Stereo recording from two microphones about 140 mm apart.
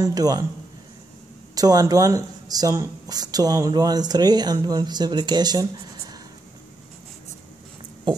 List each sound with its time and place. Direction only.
0.0 s speech: 25° right (ahead or behind)
1.5 s speech: 25° right (ahead or behind)